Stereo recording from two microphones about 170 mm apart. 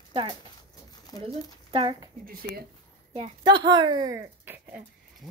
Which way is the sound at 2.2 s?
60° right (ahead or behind).